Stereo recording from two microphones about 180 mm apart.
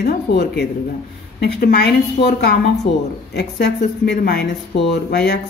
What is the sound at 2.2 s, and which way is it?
Speech, 35° left (ahead or behind).